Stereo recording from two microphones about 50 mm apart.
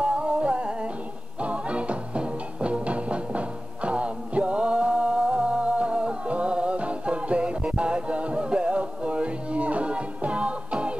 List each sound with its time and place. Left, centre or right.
0.0 s music: right